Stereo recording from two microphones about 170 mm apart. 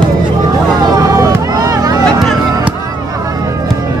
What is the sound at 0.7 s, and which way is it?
Vehicle, 20° right (ahead or behind).